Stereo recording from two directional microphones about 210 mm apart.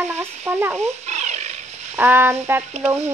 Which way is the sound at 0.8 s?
30° right (ahead or behind).